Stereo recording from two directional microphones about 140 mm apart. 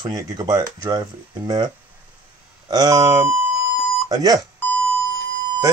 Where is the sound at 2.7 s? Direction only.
30° right (ahead or behind).